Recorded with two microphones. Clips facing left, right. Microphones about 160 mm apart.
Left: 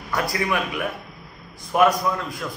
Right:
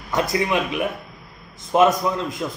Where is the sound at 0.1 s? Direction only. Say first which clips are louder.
Right 3 dB; 20° right (ahead or behind).